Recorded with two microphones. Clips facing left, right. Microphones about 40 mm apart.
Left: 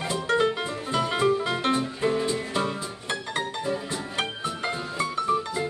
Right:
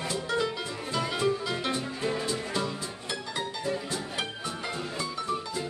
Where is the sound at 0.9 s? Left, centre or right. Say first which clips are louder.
Left 5 dB; left.